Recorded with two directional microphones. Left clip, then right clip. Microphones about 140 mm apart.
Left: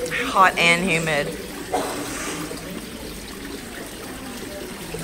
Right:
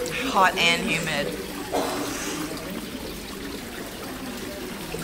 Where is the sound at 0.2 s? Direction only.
30° right (ahead or behind).